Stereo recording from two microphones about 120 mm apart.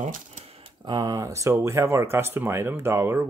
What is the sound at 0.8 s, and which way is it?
Speech, 35° right (ahead or behind).